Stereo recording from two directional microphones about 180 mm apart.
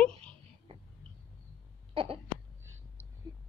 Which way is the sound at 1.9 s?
30° right (ahead or behind).